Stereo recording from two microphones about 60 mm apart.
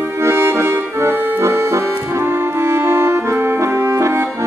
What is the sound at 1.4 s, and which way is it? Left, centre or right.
Music, right.